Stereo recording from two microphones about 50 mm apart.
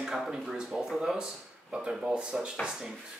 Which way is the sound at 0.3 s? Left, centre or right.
Centre.